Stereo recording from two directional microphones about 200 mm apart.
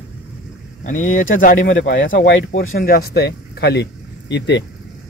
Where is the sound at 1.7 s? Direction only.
65° left (ahead or behind).